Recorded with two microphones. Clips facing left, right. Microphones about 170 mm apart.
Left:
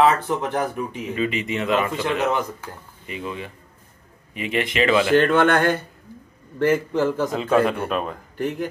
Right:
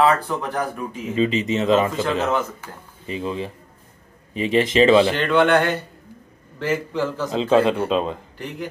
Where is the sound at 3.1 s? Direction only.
30° right (ahead or behind).